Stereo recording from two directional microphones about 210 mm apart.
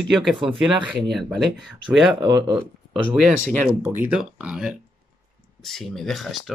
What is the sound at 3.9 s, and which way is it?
Speech, 5° right (ahead or behind).